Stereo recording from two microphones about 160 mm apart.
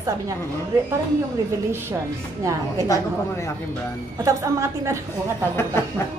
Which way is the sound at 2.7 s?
20° left (ahead or behind).